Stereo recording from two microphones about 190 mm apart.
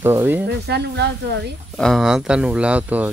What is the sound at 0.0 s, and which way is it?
Speech, 10° right (ahead or behind).